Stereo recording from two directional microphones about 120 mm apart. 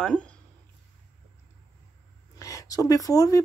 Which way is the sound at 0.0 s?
10° left (ahead or behind).